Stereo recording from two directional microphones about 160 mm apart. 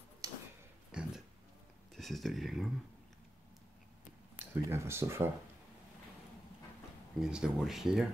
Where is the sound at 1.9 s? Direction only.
Centre (ahead or behind).